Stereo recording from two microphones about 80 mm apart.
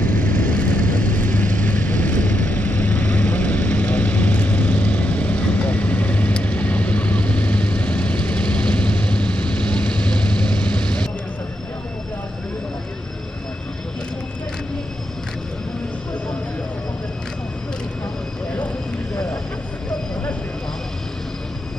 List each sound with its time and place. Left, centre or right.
0.0 s vehicle: left